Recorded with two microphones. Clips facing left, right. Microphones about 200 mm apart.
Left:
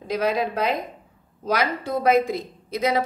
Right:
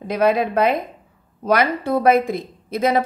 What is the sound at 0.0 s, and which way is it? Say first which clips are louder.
A woman's voice: right 5 dB; 55° right (ahead or behind).